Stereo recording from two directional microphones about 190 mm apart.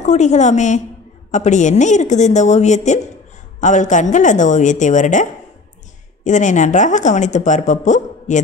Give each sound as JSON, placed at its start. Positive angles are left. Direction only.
{"t": 0.0, "sound": "speech", "side_deg": 35}